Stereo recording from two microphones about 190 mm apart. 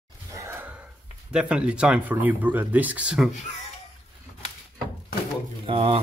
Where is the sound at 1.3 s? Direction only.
5° right (ahead or behind).